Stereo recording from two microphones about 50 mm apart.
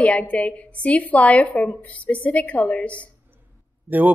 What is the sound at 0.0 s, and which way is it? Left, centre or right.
A woman's voice, left.